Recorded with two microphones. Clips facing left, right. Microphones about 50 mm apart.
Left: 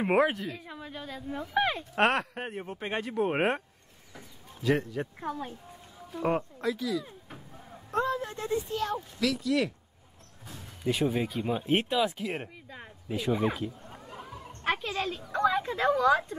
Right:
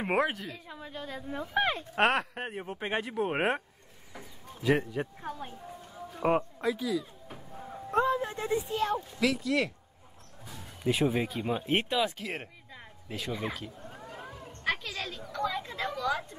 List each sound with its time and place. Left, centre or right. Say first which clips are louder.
0.0 s speech: left 4 dB; centre
1.0 s speech: even; centre
4.1 s bird: right 2 dB; centre
6.2 s speech: right 1 dB; centre
10.9 s speech: even; centre
14.7 s a sound: left 3 dB; left